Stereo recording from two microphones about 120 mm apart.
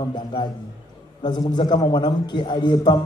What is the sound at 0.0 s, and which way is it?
A man's voice, 40° left (ahead or behind).